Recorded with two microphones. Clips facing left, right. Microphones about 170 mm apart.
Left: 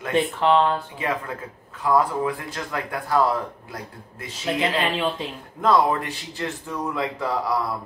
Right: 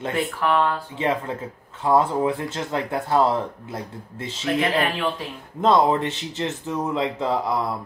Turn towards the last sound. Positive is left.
turn(degrees=-20)  # may be behind; listen again after turning